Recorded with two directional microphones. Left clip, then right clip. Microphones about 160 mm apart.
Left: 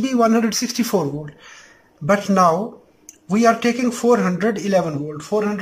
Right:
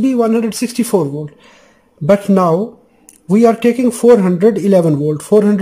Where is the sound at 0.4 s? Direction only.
20° right (ahead or behind).